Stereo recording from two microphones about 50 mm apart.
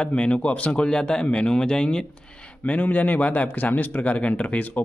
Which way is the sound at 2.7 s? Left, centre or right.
Left.